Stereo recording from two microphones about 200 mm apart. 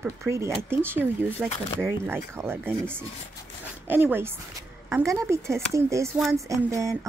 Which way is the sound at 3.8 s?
10° right (ahead or behind).